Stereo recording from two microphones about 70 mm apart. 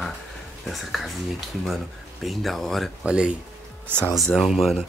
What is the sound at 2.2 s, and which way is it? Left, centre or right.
Speech, centre.